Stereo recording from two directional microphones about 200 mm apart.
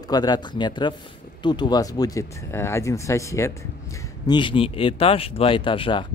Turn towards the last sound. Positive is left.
turn(degrees=25)  # may be behind; listen again after turning